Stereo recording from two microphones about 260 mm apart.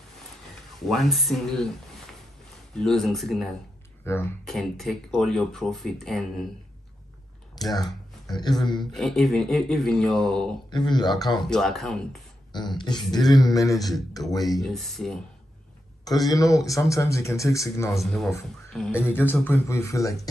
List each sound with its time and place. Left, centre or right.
0.8 s speech: centre
2.7 s speech: centre
7.5 s speech: centre
8.9 s speech: centre
10.7 s speech: centre
11.4 s speech: centre
12.5 s speech: centre
14.4 s speech: centre
16.3 s speech: centre
17.9 s speech: centre